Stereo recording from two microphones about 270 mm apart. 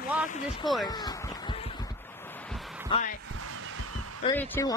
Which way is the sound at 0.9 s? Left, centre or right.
Centre.